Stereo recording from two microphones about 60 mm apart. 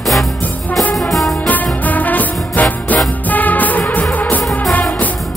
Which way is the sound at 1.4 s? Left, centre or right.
Left.